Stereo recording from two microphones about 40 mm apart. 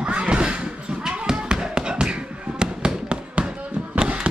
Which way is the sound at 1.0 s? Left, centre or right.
Right.